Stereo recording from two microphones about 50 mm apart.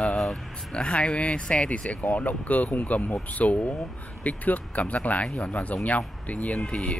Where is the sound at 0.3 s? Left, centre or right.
Left.